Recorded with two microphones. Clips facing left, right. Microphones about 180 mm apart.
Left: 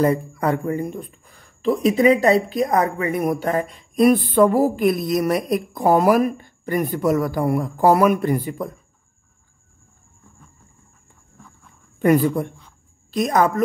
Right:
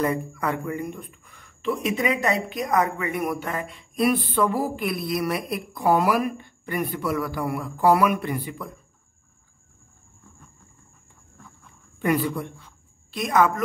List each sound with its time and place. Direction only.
0.0 s speech: 35° left (ahead or behind)
12.0 s a woman's voice: 45° left (ahead or behind)